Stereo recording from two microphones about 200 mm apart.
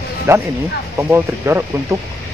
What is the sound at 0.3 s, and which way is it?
Speech, 10° right (ahead or behind).